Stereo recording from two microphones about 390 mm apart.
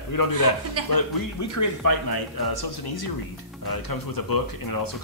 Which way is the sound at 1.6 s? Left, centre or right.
Left.